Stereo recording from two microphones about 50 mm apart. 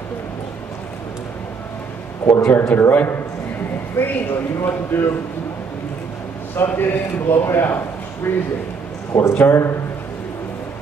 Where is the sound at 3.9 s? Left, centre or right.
Left.